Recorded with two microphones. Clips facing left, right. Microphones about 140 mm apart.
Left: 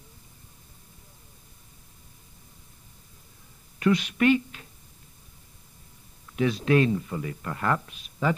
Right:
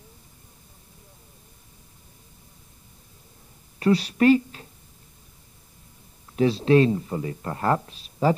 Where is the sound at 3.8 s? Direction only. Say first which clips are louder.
Right 3 dB; 35° right (ahead or behind).